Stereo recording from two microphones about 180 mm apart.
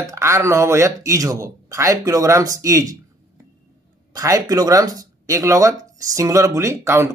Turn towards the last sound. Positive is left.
turn(degrees=-15)  # may be behind; listen again after turning